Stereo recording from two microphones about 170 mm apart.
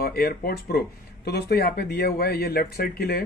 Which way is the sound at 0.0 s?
60° left (ahead or behind).